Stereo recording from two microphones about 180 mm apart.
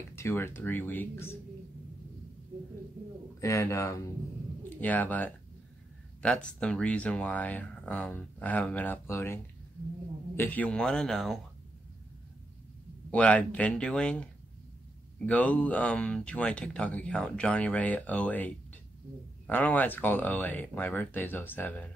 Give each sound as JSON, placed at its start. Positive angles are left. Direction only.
{"t": 0.1, "sound": "speech", "side_deg": 15}
{"t": 3.3, "sound": "a man's voice", "side_deg": 15}
{"t": 13.1, "sound": "speech", "side_deg": 5}